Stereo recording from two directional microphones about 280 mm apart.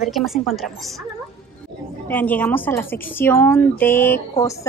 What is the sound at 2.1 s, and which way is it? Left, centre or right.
A woman's voice, centre.